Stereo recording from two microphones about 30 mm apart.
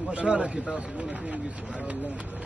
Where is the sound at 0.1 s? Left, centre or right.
Right.